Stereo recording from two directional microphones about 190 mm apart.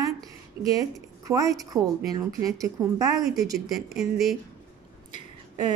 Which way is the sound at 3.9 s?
Centre (ahead or behind).